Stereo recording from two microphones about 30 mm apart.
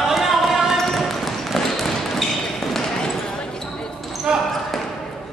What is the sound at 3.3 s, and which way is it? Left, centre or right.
Basketball bounce, left.